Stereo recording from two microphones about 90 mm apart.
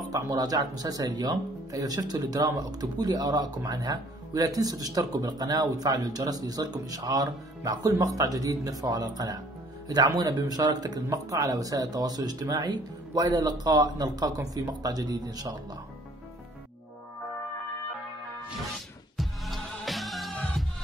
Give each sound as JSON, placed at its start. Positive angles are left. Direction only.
{"t": 0.1, "sound": "speech", "side_deg": -45}
{"t": 19.1, "sound": "music", "side_deg": 0}